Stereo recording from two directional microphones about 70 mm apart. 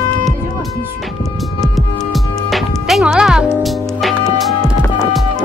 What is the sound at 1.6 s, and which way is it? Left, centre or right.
Music, centre.